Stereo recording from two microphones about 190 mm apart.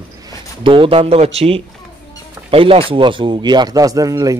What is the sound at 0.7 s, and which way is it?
Speech, 30° right (ahead or behind).